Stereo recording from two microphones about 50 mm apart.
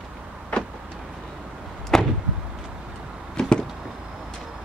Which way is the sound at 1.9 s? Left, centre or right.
Centre.